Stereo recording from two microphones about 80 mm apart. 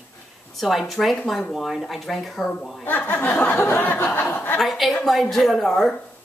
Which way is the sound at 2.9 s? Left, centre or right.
Left.